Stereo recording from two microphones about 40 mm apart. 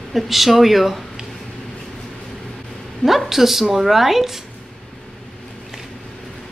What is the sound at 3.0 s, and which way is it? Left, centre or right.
Speech, centre.